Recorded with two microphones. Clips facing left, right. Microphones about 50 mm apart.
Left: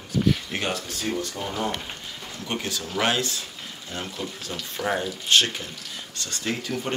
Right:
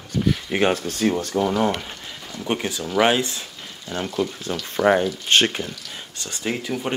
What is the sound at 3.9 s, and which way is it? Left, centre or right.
Speech, right.